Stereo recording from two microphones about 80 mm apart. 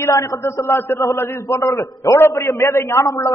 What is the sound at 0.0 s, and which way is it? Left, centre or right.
A man's voice, left.